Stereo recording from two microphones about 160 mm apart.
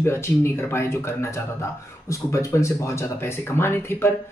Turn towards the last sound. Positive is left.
turn(degrees=15)  # may be behind; listen again after turning